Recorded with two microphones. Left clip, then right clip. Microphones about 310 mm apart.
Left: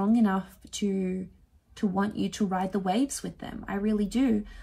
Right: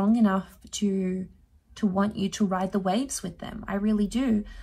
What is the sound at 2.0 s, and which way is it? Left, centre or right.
A woman's voice, centre.